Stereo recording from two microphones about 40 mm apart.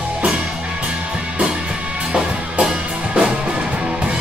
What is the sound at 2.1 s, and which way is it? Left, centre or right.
Music, right.